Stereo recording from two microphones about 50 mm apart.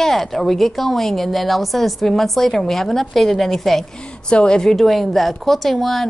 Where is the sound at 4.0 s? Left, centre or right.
Centre.